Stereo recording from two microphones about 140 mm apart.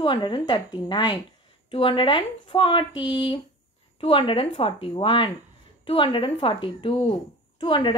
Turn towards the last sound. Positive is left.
turn(degrees=35)  # may be behind; listen again after turning